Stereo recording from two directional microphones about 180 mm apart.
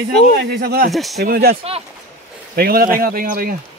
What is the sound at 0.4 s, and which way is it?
Speech, 60° right (ahead or behind).